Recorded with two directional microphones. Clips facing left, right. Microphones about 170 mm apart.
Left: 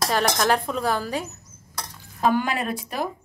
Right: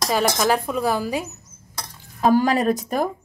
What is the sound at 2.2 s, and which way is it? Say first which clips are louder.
Speech: right 5 dB; 40° right (ahead or behind).